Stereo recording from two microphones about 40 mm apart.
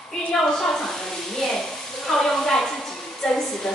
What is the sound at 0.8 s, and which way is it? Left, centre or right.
A woman's voice, centre.